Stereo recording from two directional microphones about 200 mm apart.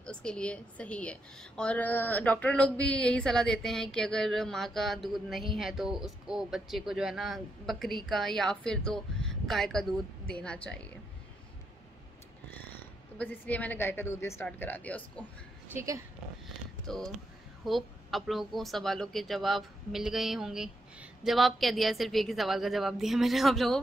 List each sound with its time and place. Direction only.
0.0 s a woman's voice: 5° left (ahead or behind)
13.2 s a woman's voice: 10° left (ahead or behind)
15.7 s speech: 15° right (ahead or behind)
16.8 s a woman's voice: centre (ahead or behind)